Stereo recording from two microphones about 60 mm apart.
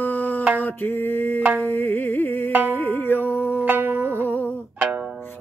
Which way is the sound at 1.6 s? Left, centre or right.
Left.